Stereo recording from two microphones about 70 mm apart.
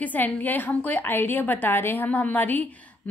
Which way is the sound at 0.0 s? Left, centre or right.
Left.